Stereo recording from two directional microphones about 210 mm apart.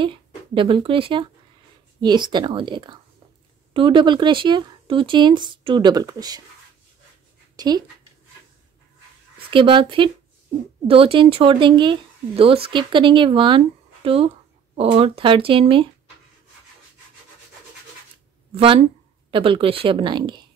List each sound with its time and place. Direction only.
0.0 s speech: 25° right (ahead or behind)
7.5 s speech: 20° right (ahead or behind)
9.5 s speech: 25° right (ahead or behind)
18.5 s speech: 25° right (ahead or behind)